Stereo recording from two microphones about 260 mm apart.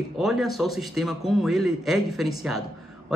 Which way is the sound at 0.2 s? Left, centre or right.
Centre.